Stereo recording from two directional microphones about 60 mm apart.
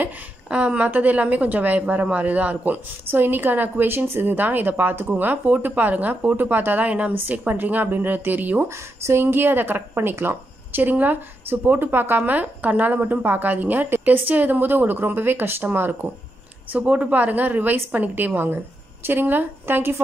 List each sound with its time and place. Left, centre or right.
0.5 s a woman's voice: centre
3.1 s a woman's voice: right
8.6 s speech: right
16.7 s a woman's voice: right